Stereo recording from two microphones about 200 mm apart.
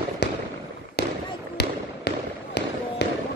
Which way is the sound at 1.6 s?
55° left (ahead or behind).